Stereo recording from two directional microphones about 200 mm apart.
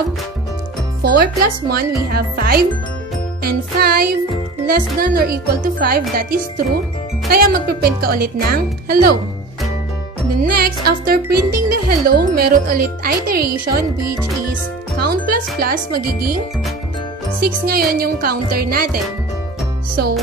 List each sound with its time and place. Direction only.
1.0 s speech: 50° right (ahead or behind)
10.4 s speech: 50° right (ahead or behind)
17.6 s speech: 50° right (ahead or behind)